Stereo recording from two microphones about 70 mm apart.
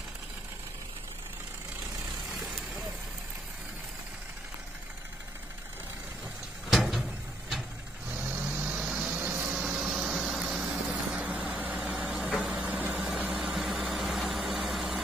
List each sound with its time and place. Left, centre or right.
6.7 s a sound: centre
8.1 s vehicle: right
8.5 s vehicle: centre
9.0 s vehicle: right
9.5 s a sound: centre
10.0 s vehicle: centre
11.1 s vehicle: right; by 15.0 s centre